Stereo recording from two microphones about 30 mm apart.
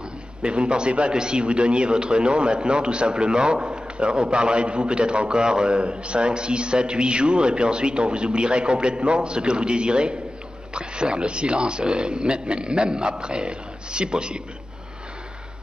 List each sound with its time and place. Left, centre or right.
0.4 s a man's voice: right
1.1 s a man's voice: right
3.7 s a sound: right
4.2 s a man's voice: right
5.8 s a man's voice: right